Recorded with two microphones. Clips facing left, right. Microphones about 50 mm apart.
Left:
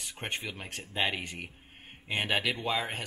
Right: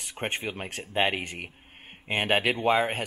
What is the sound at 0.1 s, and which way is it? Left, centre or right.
Speech, right.